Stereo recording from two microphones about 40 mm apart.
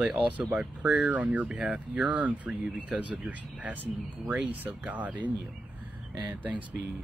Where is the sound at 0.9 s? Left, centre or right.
Right.